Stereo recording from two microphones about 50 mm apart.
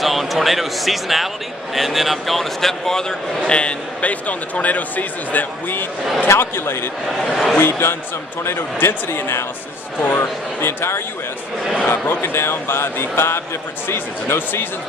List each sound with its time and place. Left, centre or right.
0.0 s speech: centre
3.4 s a man's voice: left
6.2 s speech: left